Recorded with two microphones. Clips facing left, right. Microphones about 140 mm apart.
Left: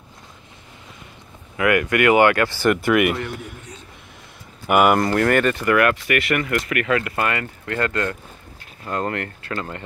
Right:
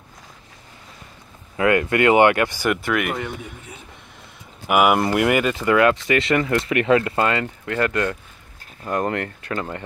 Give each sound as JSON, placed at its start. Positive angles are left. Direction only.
{"t": 1.6, "sound": "speech", "side_deg": -25}
{"t": 2.7, "sound": "speech", "side_deg": 0}
{"t": 4.6, "sound": "speech", "side_deg": -5}